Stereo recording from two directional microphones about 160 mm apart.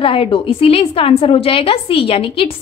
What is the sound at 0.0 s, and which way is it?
A woman's voice, 35° left (ahead or behind).